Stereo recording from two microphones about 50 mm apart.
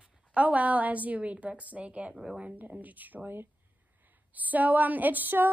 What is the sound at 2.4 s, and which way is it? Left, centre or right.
A woman's voice, right.